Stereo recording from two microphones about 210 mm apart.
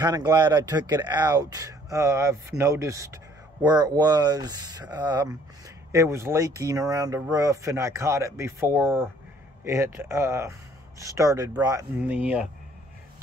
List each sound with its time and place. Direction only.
0.0 s speech: 20° right (ahead or behind)